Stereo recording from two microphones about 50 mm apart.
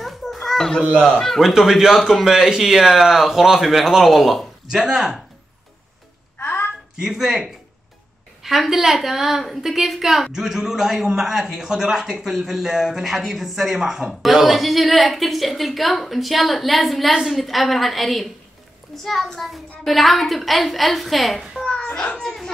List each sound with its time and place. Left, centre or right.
0.0 s children playing: centre
1.4 s a woman's voice: centre
6.3 s a sound: left
7.0 s a woman's voice: centre